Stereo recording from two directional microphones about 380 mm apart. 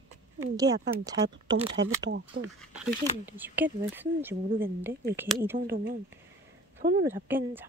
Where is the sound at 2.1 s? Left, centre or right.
Right.